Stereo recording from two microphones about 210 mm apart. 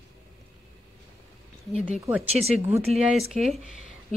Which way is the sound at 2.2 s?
30° right (ahead or behind).